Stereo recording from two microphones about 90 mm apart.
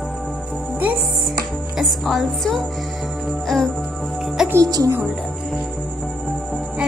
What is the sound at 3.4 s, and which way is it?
Music, 5° left (ahead or behind).